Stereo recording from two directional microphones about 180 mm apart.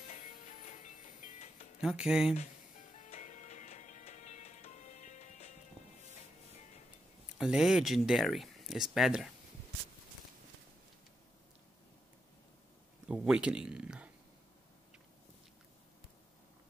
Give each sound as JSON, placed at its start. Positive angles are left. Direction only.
{"t": 0.1, "sound": "music", "side_deg": 40}
{"t": 1.8, "sound": "speech", "side_deg": -5}
{"t": 3.1, "sound": "music", "side_deg": 40}
{"t": 7.3, "sound": "speech", "side_deg": -5}
{"t": 13.1, "sound": "speech", "side_deg": -5}